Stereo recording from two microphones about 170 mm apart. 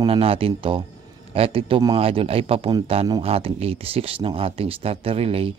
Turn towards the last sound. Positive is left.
turn(degrees=-35)  # may be behind; listen again after turning